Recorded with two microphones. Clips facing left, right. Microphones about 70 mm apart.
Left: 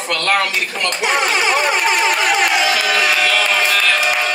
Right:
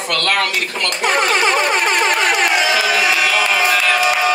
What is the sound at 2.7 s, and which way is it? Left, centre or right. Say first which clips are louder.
Music: right 1 dB; centre.